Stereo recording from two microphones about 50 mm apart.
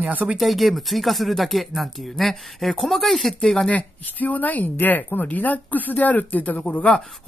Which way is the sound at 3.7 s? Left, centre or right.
Left.